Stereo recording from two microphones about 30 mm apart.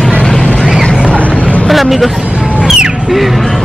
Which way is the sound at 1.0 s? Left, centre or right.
Left.